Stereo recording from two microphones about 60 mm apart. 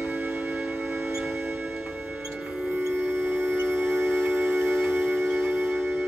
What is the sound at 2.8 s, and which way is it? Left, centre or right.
Music, right.